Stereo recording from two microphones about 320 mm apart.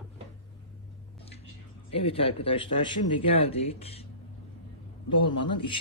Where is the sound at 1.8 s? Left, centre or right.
Centre.